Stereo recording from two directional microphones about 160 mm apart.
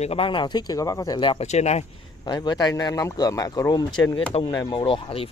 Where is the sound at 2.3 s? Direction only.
25° left (ahead or behind).